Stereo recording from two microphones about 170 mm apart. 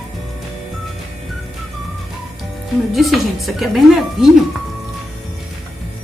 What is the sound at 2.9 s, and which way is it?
Speech, centre (ahead or behind).